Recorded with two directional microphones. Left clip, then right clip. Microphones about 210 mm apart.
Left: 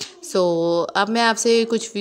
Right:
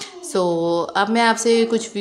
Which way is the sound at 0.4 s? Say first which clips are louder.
Left 1 dB; 25° left (ahead or behind).